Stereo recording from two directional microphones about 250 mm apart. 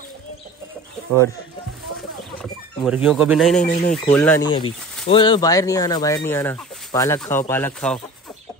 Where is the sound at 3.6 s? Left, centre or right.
Left.